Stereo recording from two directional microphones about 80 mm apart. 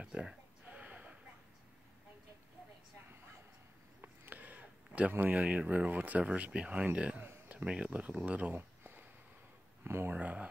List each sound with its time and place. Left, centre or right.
0.0 s a sound: centre
4.0 s speech: right
10.1 s speech: centre